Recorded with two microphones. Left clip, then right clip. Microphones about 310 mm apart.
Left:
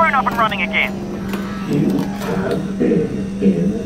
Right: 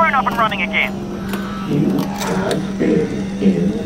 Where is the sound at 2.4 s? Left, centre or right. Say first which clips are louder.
Right 1 dB; centre.